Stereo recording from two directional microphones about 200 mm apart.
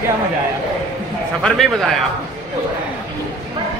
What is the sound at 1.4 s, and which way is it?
Speech, centre (ahead or behind).